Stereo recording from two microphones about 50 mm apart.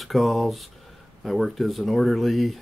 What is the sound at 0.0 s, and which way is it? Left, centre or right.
Speech, centre.